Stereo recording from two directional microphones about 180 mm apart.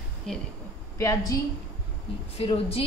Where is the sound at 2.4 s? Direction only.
35° left (ahead or behind).